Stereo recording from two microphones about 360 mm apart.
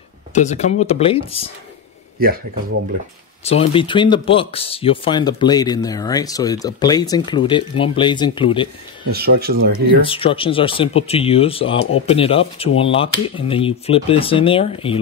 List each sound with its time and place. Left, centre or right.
0.3 s speech: centre
3.4 s speech: centre
9.1 s speech: right
10.0 s speech: centre